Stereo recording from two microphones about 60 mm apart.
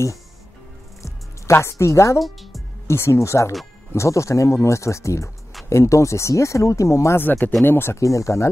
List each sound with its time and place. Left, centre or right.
1.0 s music: left
2.9 s speech: left
7.2 s speech: left
8.0 s speech: left